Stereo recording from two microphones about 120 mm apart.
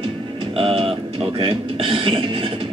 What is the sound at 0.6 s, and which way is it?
Music, 50° right (ahead or behind).